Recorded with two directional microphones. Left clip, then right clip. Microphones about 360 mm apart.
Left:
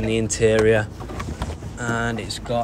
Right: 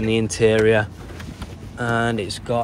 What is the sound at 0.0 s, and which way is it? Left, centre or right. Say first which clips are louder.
Speech: right 2 dB; centre.